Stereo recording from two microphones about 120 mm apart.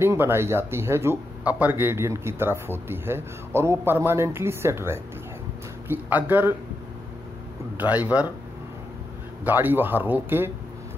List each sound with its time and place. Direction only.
0.0 s speech: 20° right (ahead or behind)
7.7 s speech: 15° right (ahead or behind)
9.4 s speech: 15° right (ahead or behind)